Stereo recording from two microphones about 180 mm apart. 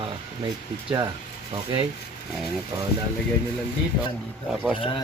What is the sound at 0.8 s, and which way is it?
Speech, 25° right (ahead or behind).